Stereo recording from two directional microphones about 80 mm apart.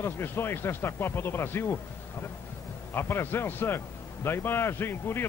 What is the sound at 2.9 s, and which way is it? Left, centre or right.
A man's voice, left.